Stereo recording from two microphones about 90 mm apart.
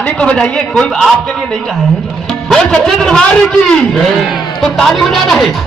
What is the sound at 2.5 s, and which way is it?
A man's voice, 10° left (ahead or behind).